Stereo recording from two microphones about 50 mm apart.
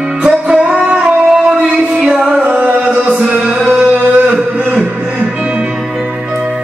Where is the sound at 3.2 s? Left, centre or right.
Centre.